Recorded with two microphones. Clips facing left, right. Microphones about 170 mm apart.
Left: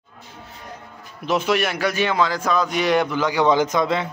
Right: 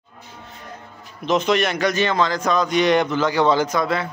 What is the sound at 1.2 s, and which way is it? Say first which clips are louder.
A man's voice: right 2 dB; 10° left (ahead or behind).